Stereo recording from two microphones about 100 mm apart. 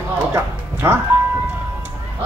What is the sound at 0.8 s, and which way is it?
Music, 25° right (ahead or behind).